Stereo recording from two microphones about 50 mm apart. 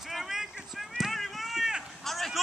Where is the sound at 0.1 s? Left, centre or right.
Centre.